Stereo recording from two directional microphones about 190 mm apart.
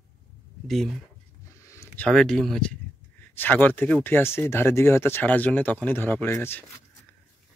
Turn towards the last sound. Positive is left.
turn(degrees=10)  # may be behind; listen again after turning